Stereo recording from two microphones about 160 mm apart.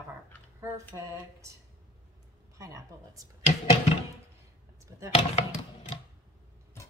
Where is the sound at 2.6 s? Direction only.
20° right (ahead or behind).